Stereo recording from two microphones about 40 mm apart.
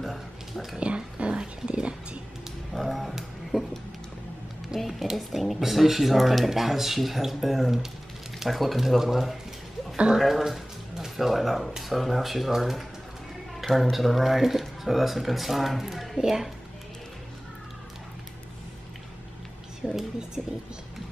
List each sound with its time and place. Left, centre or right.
0.0 s a sound: centre
0.7 s whispering: right
2.8 s a sound: centre
4.7 s speech: centre
16.2 s a woman's voice: centre
19.8 s a woman's voice: centre
20.4 s speech: right